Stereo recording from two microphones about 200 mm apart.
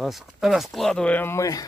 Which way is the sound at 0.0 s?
Centre (ahead or behind).